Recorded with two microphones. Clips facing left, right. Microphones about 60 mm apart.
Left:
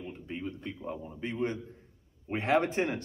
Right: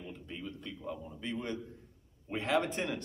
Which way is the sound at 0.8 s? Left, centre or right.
Left.